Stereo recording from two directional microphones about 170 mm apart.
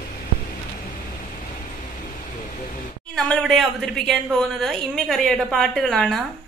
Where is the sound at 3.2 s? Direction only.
5° left (ahead or behind).